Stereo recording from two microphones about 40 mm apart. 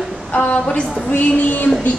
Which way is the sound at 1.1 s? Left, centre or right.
Left.